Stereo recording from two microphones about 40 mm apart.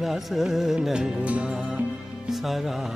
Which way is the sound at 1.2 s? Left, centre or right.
Right.